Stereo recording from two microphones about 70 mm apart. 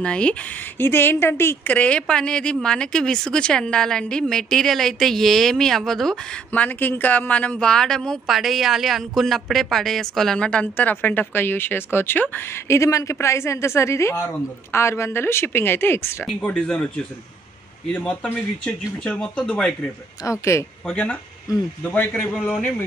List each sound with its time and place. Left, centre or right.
0.0 s speech: centre
0.7 s speech: left
1.7 s speech: centre
6.5 s speech: left
16.3 s speech: centre
20.2 s speech: left
20.8 s speech: left